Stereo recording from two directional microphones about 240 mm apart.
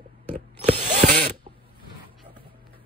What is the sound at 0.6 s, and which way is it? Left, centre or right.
Ratchet, right.